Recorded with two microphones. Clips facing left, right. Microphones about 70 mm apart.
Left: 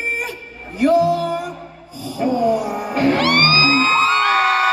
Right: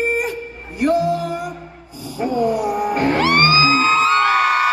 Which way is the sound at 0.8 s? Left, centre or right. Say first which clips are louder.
Left 3 dB; centre.